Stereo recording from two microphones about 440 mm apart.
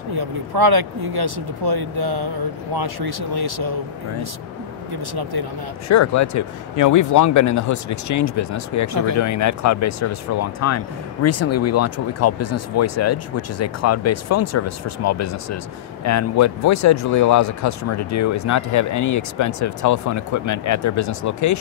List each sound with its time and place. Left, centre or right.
0.1 s speech: right
5.9 s speech: left